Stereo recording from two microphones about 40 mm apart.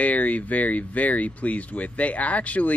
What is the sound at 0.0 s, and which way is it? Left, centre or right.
Speech, left.